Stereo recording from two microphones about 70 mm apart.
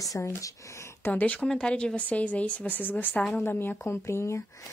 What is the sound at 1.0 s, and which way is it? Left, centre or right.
Speech, left.